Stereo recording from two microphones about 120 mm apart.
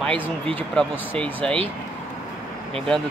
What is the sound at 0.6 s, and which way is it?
Speech, 15° left (ahead or behind).